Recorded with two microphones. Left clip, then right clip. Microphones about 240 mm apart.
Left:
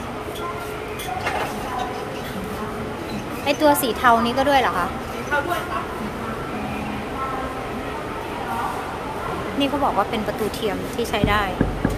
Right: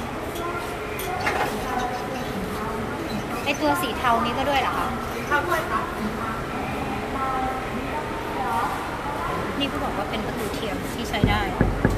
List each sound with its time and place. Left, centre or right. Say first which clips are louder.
3.4 s a woman's voice: left 6 dB; left
11.0 s speech: left 4 dB; centre